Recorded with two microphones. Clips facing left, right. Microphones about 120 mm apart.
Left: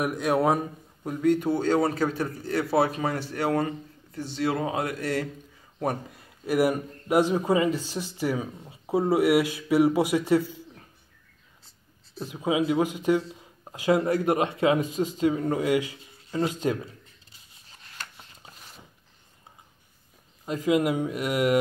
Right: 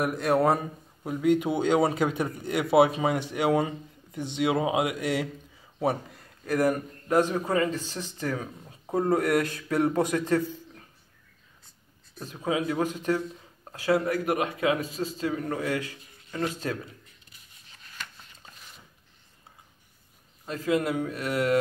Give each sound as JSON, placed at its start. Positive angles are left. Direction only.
{"t": 0.0, "sound": "a man's voice", "side_deg": 0}
{"t": 6.4, "sound": "speech", "side_deg": 10}
{"t": 12.3, "sound": "a man's voice", "side_deg": 15}
{"t": 20.4, "sound": "speech", "side_deg": 15}